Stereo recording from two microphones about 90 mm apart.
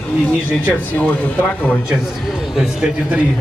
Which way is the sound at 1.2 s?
15° left (ahead or behind).